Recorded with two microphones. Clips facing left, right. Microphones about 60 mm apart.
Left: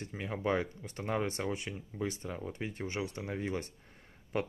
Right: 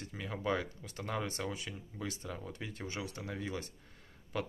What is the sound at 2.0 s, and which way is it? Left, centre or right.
Speech, left.